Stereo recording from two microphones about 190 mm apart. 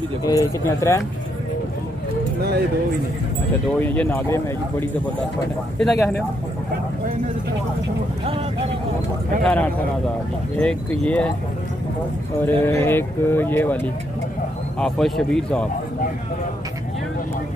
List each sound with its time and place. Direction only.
0.2 s speech: 20° left (ahead or behind)
3.8 s a man's voice: 5° left (ahead or behind)
9.4 s a man's voice: 5° left (ahead or behind)
12.4 s speech: 10° left (ahead or behind)
14.8 s a man's voice: centre (ahead or behind)